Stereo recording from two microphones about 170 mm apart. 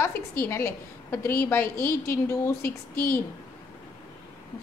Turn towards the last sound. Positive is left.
turn(degrees=60)  # may be behind; listen again after turning